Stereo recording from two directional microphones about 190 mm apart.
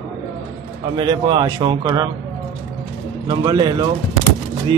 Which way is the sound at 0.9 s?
25° right (ahead or behind).